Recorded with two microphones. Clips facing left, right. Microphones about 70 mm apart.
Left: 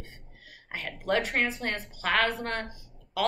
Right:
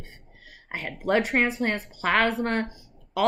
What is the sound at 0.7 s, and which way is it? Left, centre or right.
Speech, right.